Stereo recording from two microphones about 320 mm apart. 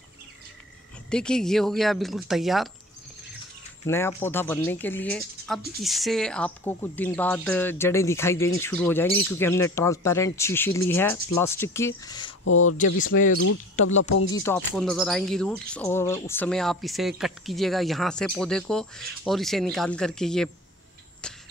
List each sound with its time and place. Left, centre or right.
1.1 s speech: centre
3.8 s speech: centre
12.4 s speech: left
14.3 s speech: centre
21.2 s a sound: centre